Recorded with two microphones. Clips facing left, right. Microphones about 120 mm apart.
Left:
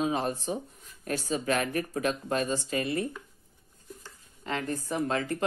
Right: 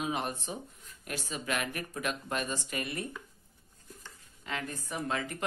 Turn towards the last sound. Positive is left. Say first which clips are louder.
# left 6 dB
turn(degrees=35)  # may be behind; listen again after turning